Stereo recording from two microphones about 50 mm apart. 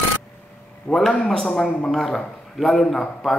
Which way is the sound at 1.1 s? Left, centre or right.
Centre.